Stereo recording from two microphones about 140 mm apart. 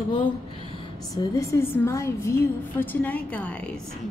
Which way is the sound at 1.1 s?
20° left (ahead or behind).